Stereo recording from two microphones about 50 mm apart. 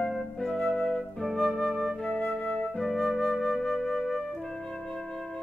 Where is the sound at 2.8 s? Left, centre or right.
Centre.